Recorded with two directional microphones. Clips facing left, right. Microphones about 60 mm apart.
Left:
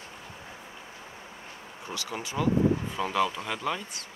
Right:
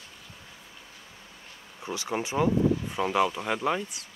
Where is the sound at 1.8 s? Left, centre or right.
Right.